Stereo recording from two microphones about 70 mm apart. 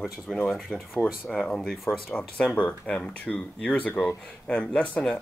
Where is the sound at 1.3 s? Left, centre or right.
Centre.